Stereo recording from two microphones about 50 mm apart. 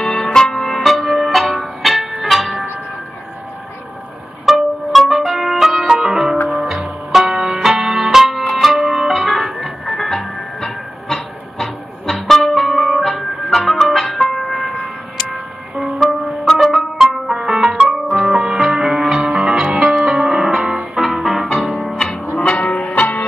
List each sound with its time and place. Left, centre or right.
0.0 s music: centre
0.8 s music: centre
4.5 s music: centre
14.6 s a sound: centre
16.4 s music: centre
19.2 s music: right
19.5 s music: centre
21.0 s music: centre
22.1 s music: left
22.4 s music: left